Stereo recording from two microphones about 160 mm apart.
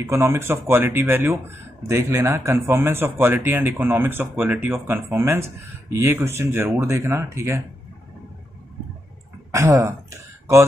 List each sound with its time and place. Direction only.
0.0 s speech: 15° right (ahead or behind)
9.5 s speech: 20° right (ahead or behind)